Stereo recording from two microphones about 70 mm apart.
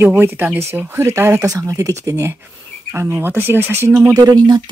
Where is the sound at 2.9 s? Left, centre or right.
Right.